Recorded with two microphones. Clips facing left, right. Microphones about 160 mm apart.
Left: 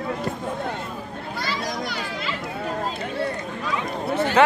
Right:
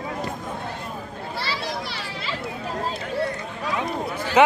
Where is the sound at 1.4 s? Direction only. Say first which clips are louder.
Left 1 dB; 30° right (ahead or behind).